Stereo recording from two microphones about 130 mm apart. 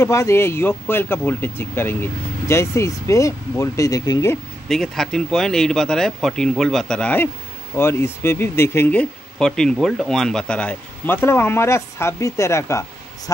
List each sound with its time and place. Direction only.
0.0 s speech: 20° left (ahead or behind)
4.6 s speech: 5° left (ahead or behind); by 12.8 s 20° left (ahead or behind)